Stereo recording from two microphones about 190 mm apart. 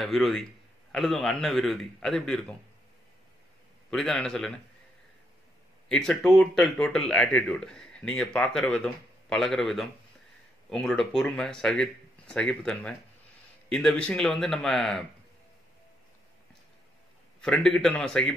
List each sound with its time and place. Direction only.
0.0 s speech: centre (ahead or behind)
3.9 s speech: 5° left (ahead or behind)
5.9 s speech: 5° left (ahead or behind)
17.4 s speech: 5° left (ahead or behind)